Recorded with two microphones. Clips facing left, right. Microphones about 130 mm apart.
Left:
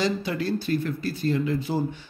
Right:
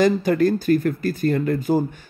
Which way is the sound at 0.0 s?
50° right (ahead or behind).